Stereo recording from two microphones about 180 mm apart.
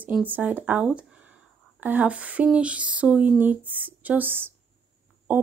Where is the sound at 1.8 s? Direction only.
10° right (ahead or behind).